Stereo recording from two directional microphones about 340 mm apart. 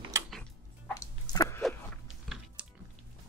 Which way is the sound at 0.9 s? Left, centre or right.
Centre.